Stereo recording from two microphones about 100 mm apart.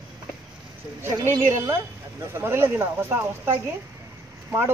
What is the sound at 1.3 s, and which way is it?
Speech, 30° right (ahead or behind).